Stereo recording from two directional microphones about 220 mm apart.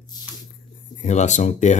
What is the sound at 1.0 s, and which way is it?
Speech, 30° left (ahead or behind).